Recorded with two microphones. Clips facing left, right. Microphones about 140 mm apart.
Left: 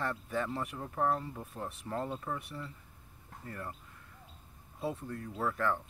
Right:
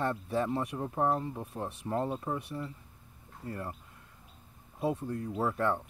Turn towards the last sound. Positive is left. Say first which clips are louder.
# right 3 dB
turn(degrees=-25)  # may be behind; listen again after turning